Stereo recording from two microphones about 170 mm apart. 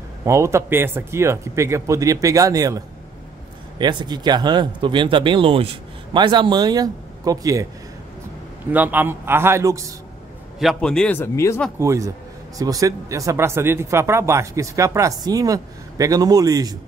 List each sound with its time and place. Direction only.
0.2 s speech: 15° right (ahead or behind)
8.7 s speech: 10° right (ahead or behind)
10.6 s speech: centre (ahead or behind)
11.8 s speech: 15° right (ahead or behind)